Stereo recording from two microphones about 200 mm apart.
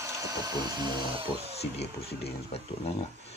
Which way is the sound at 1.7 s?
30° left (ahead or behind).